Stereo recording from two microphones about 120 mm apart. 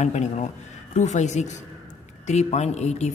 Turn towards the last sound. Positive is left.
turn(degrees=70)  # may be behind; listen again after turning